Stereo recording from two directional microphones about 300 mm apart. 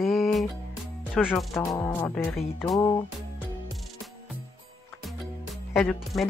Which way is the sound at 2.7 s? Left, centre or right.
Centre.